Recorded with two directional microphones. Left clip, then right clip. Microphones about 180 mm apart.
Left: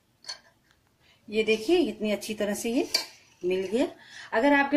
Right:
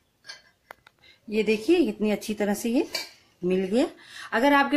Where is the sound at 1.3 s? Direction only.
40° right (ahead or behind).